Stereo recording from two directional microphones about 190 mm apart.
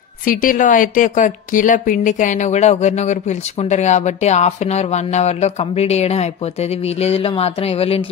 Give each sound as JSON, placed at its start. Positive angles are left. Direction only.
{"t": 0.2, "sound": "a woman's voice", "side_deg": 45}